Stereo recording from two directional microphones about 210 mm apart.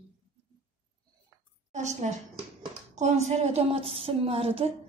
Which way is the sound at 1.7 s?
35° right (ahead or behind).